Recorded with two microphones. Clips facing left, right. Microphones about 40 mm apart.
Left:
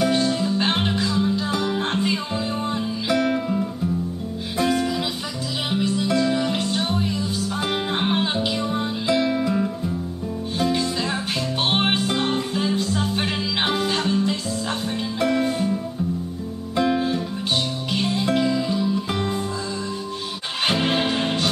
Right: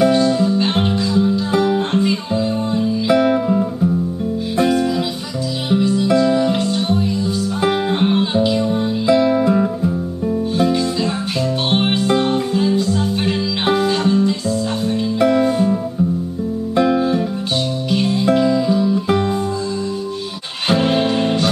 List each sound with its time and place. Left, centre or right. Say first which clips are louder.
0.0 s music: right 7 dB; centre
1.9 s music: right 6 dB; centre
3.1 s music: right 6 dB; centre
4.6 s music: right 5 dB; centre
9.0 s music: right 7 dB; centre
9.4 s music: right 7 dB; right
11.7 s music: right 6 dB; centre
13.8 s guitar: right 6 dB; centre
15.1 s music: right 7 dB; centre
17.9 s music: right 6 dB; centre
20.7 s music: right 8 dB; centre